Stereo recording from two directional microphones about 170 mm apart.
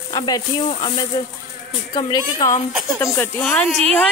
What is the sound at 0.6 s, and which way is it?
Speech, 35° left (ahead or behind).